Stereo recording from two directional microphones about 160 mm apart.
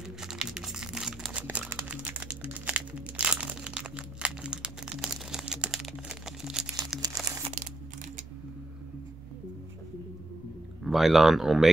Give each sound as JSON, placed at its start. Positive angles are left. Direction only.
{"t": 0.2, "sound": "crumpling", "side_deg": -5}
{"t": 10.8, "sound": "speech", "side_deg": 0}